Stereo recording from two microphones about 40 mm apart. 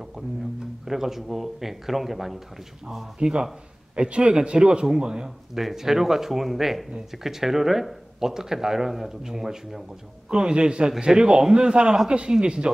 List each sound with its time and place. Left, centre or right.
0.8 s speech: centre
3.2 s a man's voice: right
5.5 s speech: centre
10.3 s a man's voice: right